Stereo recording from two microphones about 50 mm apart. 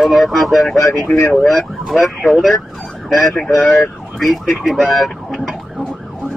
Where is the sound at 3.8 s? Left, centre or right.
Centre.